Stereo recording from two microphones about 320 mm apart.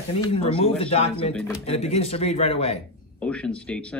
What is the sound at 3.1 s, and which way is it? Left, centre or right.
Speech, centre.